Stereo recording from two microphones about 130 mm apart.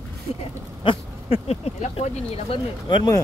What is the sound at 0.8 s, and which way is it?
Speech, 50° left (ahead or behind).